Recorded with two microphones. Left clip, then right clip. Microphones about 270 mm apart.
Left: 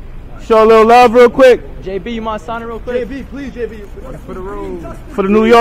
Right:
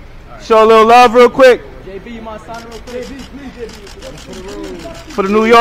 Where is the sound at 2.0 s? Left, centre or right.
Left.